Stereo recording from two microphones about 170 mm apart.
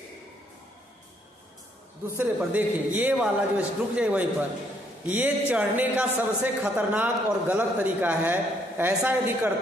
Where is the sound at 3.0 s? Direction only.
10° right (ahead or behind).